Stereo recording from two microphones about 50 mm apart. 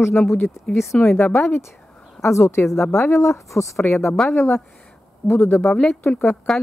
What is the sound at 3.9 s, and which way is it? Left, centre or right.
Speech, left.